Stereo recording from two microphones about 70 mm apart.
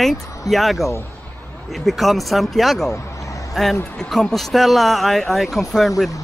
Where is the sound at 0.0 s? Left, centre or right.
Centre.